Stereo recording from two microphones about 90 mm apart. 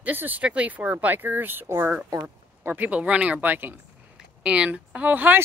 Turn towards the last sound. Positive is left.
turn(degrees=-20)  # may be behind; listen again after turning